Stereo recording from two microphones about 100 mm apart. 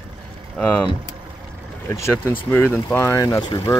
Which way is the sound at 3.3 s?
40° left (ahead or behind).